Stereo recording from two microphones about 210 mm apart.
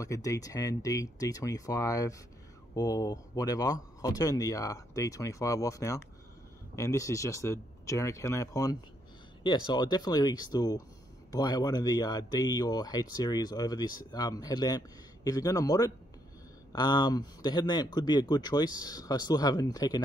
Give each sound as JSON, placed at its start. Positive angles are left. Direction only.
{"t": 0.0, "sound": "speech", "side_deg": 15}